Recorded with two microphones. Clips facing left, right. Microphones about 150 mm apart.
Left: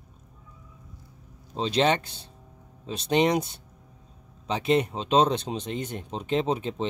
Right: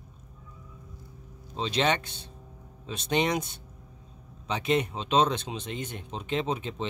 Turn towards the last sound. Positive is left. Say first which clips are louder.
# left 4 dB
turn(degrees=35)  # may be behind; listen again after turning